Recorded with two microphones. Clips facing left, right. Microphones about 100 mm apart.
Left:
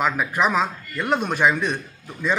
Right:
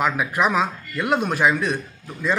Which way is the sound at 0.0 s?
5° right (ahead or behind).